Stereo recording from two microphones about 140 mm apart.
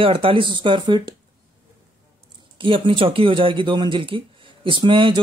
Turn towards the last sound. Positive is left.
turn(degrees=-35)  # may be behind; listen again after turning